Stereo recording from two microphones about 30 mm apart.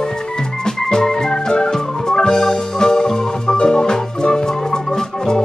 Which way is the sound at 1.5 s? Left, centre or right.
Left.